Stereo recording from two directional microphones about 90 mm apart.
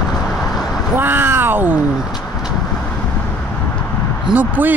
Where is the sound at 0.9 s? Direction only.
25° right (ahead or behind).